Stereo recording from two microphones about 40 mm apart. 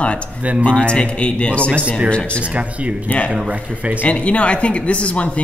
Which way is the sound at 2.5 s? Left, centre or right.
Right.